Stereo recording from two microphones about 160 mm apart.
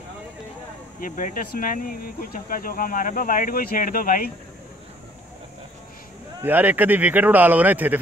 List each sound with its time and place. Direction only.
1.0 s speech: 60° left (ahead or behind)
6.4 s speech: 10° right (ahead or behind)